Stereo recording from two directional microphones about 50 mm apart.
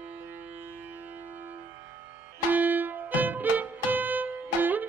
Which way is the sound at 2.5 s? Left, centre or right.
Right.